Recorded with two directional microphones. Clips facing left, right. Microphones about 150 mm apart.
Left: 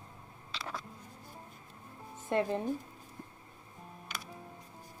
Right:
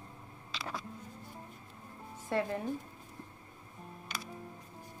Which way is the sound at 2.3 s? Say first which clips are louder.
Left 2 dB; 20° left (ahead or behind).